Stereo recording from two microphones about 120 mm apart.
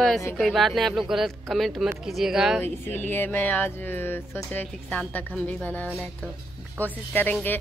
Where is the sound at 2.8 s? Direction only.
15° left (ahead or behind).